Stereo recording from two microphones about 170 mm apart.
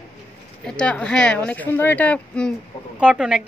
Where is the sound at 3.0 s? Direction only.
5° right (ahead or behind).